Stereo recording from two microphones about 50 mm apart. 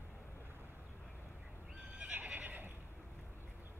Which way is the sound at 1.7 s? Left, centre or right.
Right.